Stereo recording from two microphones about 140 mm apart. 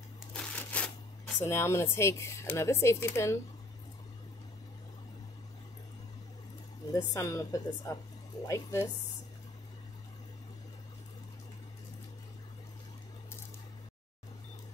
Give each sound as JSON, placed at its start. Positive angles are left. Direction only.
{"t": 0.3, "sound": "crushing", "side_deg": 10}
{"t": 1.4, "sound": "speech", "side_deg": 20}
{"t": 6.9, "sound": "speech", "side_deg": 25}